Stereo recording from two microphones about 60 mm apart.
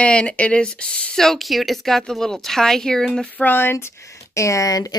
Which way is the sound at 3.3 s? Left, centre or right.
Left.